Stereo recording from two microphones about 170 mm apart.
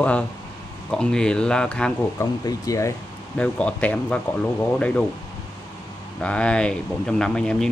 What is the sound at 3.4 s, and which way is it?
Speech, 5° left (ahead or behind).